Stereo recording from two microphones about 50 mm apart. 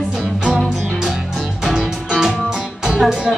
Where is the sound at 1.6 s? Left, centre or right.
Centre.